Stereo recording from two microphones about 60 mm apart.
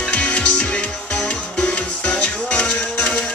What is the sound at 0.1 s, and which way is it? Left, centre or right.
Music, left.